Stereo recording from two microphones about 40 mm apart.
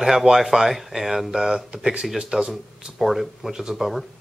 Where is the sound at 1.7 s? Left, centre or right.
Right.